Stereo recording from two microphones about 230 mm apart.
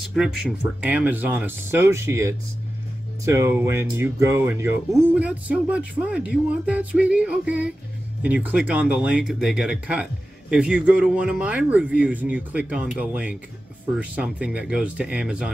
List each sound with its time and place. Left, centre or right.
0.1 s speech: centre